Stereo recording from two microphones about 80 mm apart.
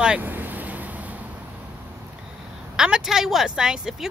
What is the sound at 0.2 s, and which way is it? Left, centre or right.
Vehicle, right.